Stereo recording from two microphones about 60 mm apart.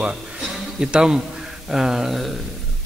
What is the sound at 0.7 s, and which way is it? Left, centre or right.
A man's voice, centre.